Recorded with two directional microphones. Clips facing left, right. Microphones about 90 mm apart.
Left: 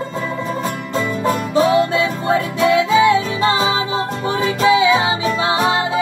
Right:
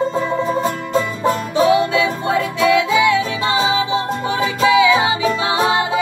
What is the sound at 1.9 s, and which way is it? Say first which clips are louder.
Music: even; 30° left (ahead or behind).